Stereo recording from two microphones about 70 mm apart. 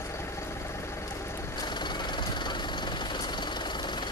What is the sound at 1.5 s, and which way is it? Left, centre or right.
Vehicle, left.